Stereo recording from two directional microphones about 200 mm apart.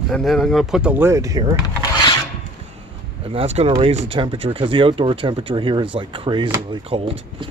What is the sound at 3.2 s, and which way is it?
Speech, 30° right (ahead or behind).